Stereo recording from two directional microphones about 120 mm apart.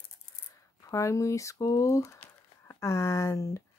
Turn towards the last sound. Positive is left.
turn(degrees=25)  # may be behind; listen again after turning